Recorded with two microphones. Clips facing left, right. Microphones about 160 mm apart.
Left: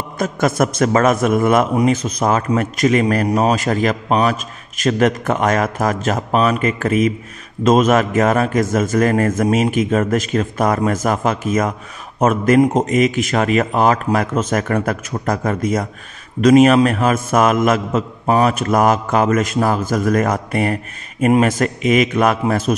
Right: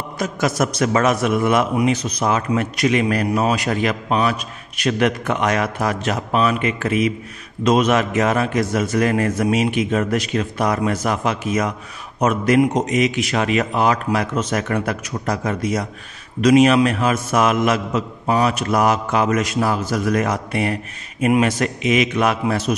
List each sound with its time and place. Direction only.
0.2 s a man's voice: 50° left (ahead or behind)